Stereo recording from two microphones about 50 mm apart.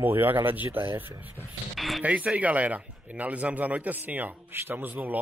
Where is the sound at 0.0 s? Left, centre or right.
Right.